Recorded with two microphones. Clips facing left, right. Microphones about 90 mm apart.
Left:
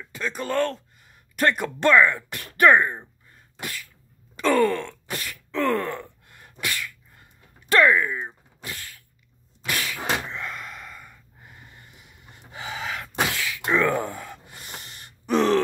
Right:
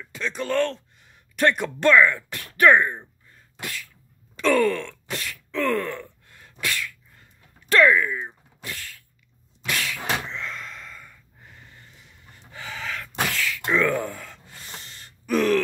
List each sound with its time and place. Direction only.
0.0 s speech: 5° left (ahead or behind)
1.8 s speech: 15° left (ahead or behind)
4.4 s speech: 10° left (ahead or behind)
5.5 s gasp: 15° left (ahead or behind)
7.7 s speech: 10° left (ahead or behind)
9.7 s a sound: 5° left (ahead or behind)
14.1 s gasp: 15° left (ahead or behind)